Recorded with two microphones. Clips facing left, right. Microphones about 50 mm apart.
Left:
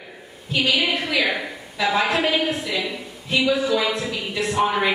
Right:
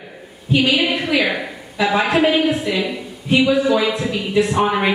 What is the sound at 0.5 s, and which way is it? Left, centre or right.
Speech, right.